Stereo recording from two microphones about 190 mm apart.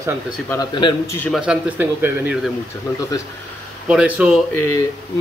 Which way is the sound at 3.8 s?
5° right (ahead or behind).